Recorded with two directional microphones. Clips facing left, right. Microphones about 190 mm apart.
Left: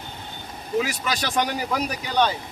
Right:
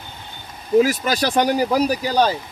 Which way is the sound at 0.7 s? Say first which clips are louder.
Right 9 dB; 40° right (ahead or behind).